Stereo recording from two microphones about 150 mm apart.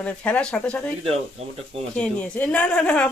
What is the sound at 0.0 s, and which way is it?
Speech, 10° left (ahead or behind).